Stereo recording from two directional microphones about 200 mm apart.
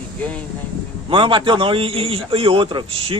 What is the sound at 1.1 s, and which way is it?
A man's voice, 25° right (ahead or behind).